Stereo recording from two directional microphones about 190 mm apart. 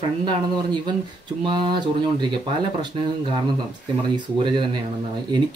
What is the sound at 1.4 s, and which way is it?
Speech, 25° right (ahead or behind).